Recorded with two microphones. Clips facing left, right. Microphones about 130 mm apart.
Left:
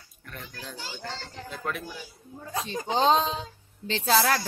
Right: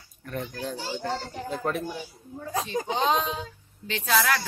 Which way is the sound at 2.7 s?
30° left (ahead or behind).